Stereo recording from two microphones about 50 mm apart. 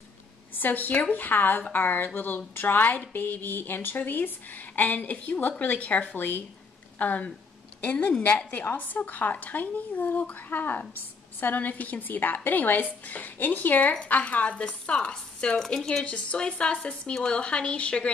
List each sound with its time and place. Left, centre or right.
0.6 s a woman's voice: left